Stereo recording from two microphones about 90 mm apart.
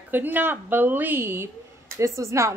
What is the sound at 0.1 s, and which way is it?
A woman's voice, 20° right (ahead or behind).